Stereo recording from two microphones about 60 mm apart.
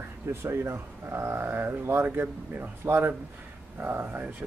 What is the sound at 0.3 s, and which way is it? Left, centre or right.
Speech, right.